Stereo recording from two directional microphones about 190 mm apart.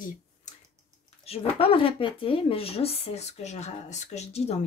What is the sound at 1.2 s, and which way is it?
A woman's voice, 30° left (ahead or behind).